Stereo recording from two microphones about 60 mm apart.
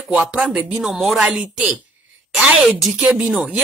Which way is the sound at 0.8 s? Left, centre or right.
Centre.